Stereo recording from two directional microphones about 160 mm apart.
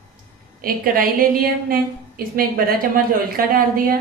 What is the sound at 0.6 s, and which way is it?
A woman's voice, 65° right (ahead or behind).